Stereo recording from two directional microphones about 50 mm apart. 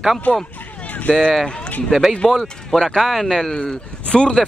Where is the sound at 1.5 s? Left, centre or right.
Centre.